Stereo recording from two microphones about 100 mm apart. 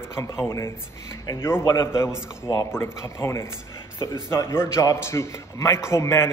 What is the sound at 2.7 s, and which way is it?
A man's voice, 25° left (ahead or behind).